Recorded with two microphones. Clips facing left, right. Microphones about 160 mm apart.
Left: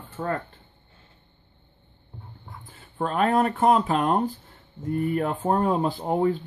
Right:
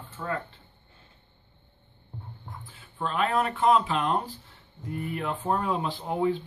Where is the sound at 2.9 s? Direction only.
45° left (ahead or behind).